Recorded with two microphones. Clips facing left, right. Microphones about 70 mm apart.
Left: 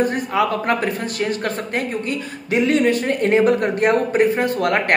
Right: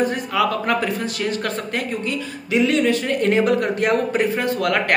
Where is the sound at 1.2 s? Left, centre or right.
Left.